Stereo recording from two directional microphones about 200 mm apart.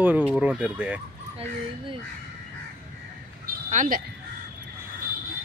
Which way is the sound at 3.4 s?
40° right (ahead or behind).